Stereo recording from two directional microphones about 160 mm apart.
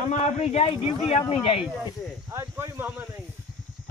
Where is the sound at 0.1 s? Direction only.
45° left (ahead or behind).